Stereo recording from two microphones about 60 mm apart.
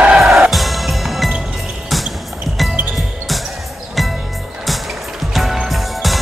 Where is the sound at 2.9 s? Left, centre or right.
Centre.